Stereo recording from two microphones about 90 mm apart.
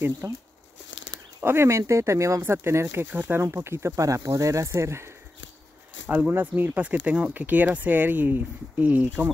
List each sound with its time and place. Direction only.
0.2 s speech: 35° right (ahead or behind)
1.4 s speech: 30° right (ahead or behind)
6.0 s speech: 20° right (ahead or behind)